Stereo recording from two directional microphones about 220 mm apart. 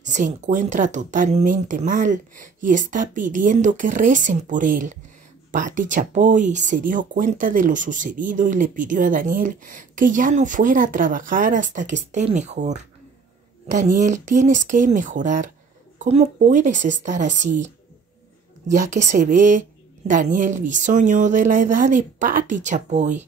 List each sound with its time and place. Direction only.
0.0 s speech: 35° right (ahead or behind)
18.7 s speech: 35° right (ahead or behind)